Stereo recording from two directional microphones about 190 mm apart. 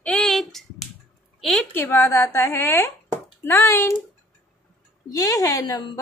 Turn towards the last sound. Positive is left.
turn(degrees=20)  # may be behind; listen again after turning